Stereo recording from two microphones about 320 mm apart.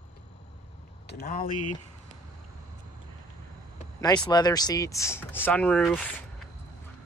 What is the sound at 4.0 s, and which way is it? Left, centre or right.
Speech, centre.